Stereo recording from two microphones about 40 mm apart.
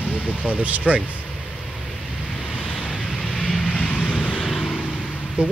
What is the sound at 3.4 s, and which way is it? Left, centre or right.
Vehicle, left.